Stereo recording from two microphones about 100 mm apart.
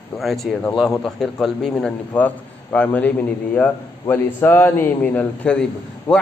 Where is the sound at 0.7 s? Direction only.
Centre (ahead or behind).